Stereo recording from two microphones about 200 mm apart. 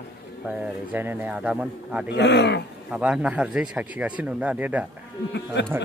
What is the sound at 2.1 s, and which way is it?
Speech, 60° left (ahead or behind).